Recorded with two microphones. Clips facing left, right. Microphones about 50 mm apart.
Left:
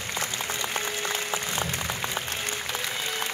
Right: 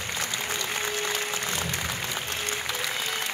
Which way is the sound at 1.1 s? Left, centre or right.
Left.